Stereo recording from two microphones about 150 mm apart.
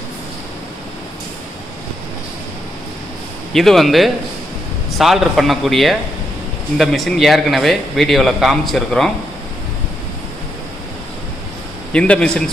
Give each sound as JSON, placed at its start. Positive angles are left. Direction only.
{"t": 3.5, "sound": "speech", "side_deg": 0}
{"t": 11.9, "sound": "a man's voice", "side_deg": 5}